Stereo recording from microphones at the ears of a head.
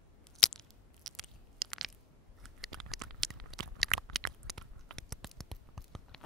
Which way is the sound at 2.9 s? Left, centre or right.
Right.